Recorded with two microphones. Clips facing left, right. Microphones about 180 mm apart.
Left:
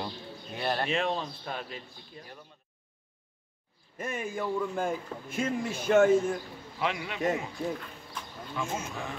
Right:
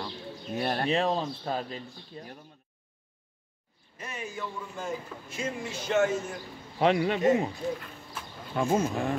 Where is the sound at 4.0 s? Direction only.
50° left (ahead or behind).